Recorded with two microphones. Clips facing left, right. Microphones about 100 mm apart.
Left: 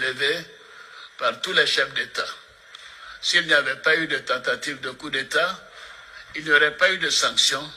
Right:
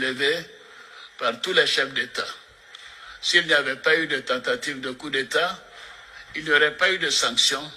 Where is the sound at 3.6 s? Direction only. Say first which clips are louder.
Even; 20° left (ahead or behind).